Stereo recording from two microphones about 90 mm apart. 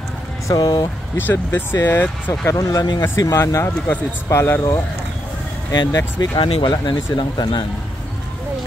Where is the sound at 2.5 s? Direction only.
40° left (ahead or behind).